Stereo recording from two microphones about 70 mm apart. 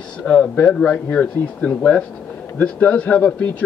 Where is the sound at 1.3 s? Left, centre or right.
Left.